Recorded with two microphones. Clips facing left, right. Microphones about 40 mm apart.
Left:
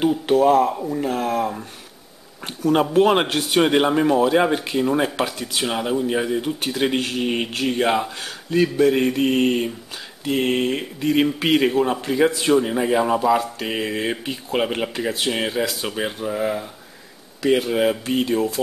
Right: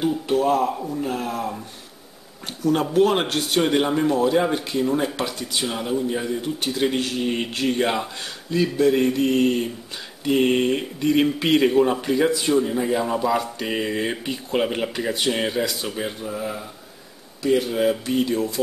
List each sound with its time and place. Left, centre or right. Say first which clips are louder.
0.3 s a man's voice: left 5 dB; left
2.4 s speech: left 3 dB; left
3.0 s a man's voice: left 1 dB; left; by 8.3 s centre
8.5 s speech: left 2 dB; left
10.2 s speech: right 2 dB; centre
11.7 s speech: right 2 dB; centre
12.6 s speech: left 3 dB; left
13.4 s speech: left 1 dB; centre
15.6 s speech: left 2 dB; left
16.2 s a man's voice: left 5 dB; left
17.6 s speech: left 1 dB; left